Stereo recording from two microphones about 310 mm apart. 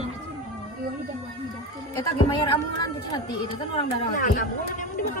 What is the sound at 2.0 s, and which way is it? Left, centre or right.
Speech, centre.